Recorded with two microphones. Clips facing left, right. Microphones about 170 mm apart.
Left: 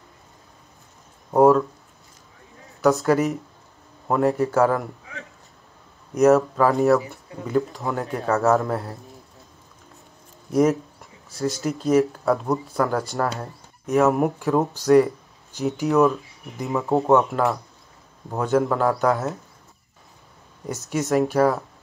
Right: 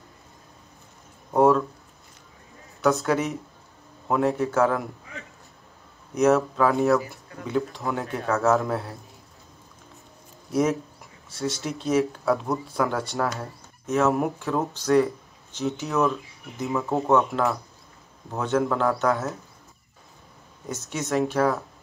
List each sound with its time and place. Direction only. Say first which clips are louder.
1.3 s speech: left 3 dB; 5° left (ahead or behind)
2.8 s a man's voice: left 4 dB; centre (ahead or behind)
6.1 s a man's voice: left 4 dB; centre (ahead or behind)
10.5 s a man's voice: left 4 dB; centre (ahead or behind)
13.4 s speech: left 2 dB; 15° left (ahead or behind)
14.1 s a man's voice: left 4 dB; centre (ahead or behind)
15.9 s a man's voice: left 7 dB; centre (ahead or behind)
16.7 s speech: left 4 dB; 20° left (ahead or behind)
17.1 s a man's voice: left 2 dB; centre (ahead or behind)
20.6 s a man's voice: left 5 dB; 5° left (ahead or behind)